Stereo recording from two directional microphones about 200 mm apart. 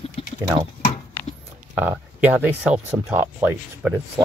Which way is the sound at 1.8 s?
10° right (ahead or behind).